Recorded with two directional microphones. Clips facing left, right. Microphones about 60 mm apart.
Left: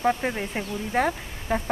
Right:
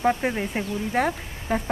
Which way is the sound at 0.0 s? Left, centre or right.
Centre.